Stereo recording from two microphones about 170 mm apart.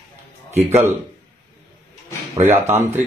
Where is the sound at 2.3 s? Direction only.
15° right (ahead or behind).